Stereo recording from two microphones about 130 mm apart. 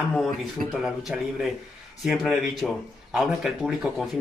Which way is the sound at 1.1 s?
5° right (ahead or behind).